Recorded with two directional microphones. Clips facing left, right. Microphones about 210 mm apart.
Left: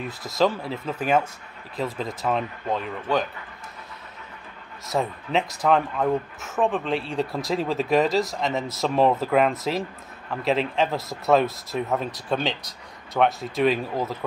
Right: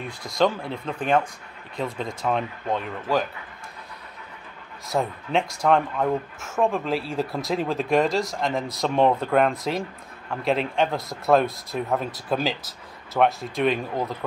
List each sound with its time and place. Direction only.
0.0 s speech: centre (ahead or behind)
4.8 s speech: centre (ahead or behind)